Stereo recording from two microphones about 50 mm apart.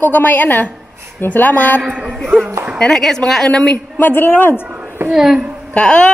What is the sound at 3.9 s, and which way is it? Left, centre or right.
Speech, left.